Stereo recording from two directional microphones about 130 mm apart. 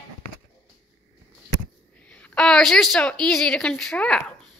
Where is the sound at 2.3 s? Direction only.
5° left (ahead or behind).